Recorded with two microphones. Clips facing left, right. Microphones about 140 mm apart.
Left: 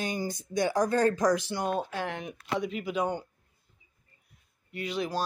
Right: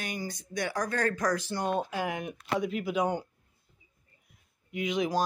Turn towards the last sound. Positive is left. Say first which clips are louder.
# right 3 dB
turn(degrees=-15)  # may be behind; listen again after turning